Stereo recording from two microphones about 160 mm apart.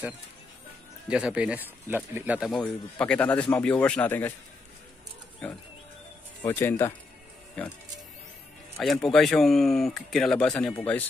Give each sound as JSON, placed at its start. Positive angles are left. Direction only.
{"t": 1.0, "sound": "speech", "side_deg": -5}
{"t": 2.5, "sound": "a man's voice", "side_deg": 5}
{"t": 6.4, "sound": "a man's voice", "side_deg": 15}
{"t": 8.7, "sound": "speech", "side_deg": 0}